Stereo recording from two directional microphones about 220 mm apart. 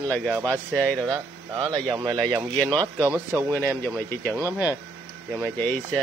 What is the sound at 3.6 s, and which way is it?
Speech, 10° left (ahead or behind).